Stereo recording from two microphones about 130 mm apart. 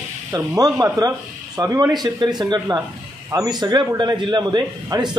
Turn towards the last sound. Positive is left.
turn(degrees=-35)  # may be behind; listen again after turning